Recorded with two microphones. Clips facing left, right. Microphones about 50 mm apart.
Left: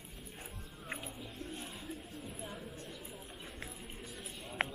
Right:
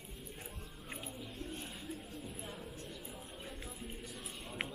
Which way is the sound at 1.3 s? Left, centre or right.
Left.